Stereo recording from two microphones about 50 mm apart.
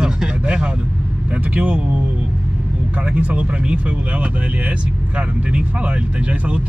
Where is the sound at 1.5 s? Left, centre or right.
Right.